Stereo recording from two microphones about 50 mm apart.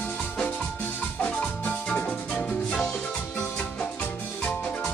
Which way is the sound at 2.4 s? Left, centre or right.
Centre.